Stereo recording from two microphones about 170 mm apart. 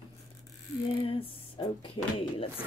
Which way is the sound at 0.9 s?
35° left (ahead or behind).